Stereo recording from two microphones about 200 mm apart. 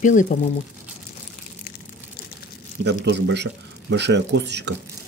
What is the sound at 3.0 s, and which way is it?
Speech, 60° right (ahead or behind).